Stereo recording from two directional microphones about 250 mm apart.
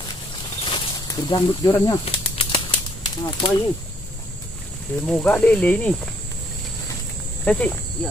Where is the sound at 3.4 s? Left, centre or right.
Centre.